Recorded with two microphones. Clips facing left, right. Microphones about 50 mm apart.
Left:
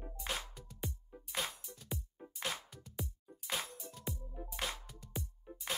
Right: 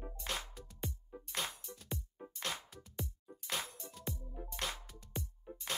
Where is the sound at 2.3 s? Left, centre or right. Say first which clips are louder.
Left 1 dB; centre.